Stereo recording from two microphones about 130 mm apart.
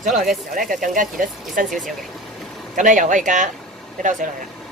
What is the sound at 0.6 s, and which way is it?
Speech, 90° right.